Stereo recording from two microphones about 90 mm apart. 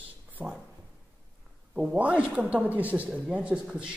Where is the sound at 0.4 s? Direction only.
25° right (ahead or behind).